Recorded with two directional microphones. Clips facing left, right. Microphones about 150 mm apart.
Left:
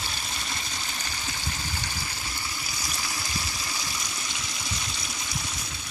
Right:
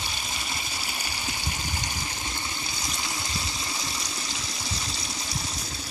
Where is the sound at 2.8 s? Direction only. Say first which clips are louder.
Right 1 dB; 25° right (ahead or behind).